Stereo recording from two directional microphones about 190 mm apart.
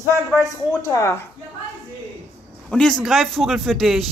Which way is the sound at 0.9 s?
15° left (ahead or behind).